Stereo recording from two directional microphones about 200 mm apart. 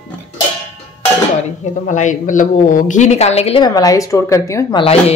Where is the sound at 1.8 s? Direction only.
40° left (ahead or behind); by 4.8 s 15° left (ahead or behind).